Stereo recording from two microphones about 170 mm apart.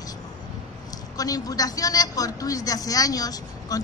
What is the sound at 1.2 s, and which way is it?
A woman's voice, 20° left (ahead or behind).